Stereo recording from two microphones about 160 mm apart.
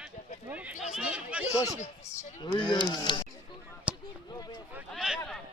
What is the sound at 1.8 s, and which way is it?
Speech, 50° left (ahead or behind).